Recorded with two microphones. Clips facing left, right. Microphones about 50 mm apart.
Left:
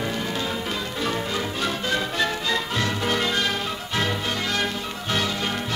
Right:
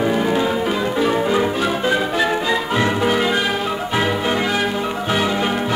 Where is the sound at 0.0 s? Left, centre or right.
Centre.